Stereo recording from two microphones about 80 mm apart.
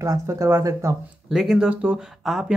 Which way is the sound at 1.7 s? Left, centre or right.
Centre.